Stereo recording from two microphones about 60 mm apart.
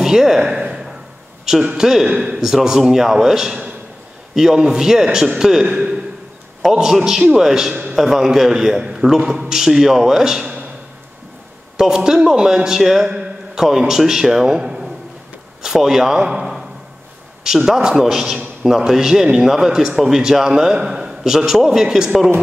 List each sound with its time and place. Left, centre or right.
0.0 s a sound: centre
1.4 s a man's voice: centre
11.7 s a man's voice: centre